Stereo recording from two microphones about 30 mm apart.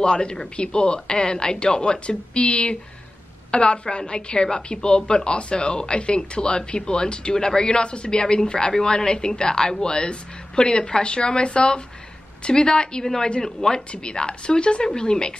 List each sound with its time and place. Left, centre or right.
0.0 s a woman's voice: left
13.4 s a woman's voice: centre
14.0 s a woman's voice: left